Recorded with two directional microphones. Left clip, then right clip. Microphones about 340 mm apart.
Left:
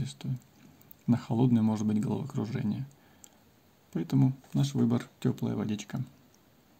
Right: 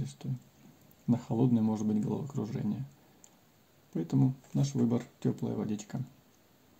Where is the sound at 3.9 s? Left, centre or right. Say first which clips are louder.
Left 2 dB; left.